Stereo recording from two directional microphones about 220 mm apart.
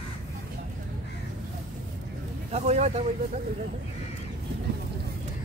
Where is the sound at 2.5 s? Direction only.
30° right (ahead or behind).